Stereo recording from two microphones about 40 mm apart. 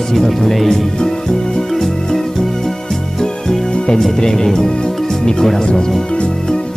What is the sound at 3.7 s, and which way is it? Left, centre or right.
Music, left.